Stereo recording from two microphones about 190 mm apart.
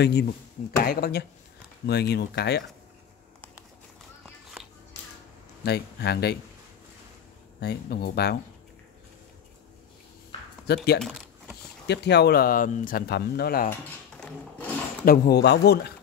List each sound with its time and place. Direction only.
0.0 s speech: 60° left (ahead or behind)
5.6 s speech: 60° left (ahead or behind)
7.6 s speech: 60° left (ahead or behind)
11.0 s speech: centre (ahead or behind)
11.9 s speech: 60° left (ahead or behind)
13.7 s speech: 10° left (ahead or behind)
15.0 s speech: 60° left (ahead or behind)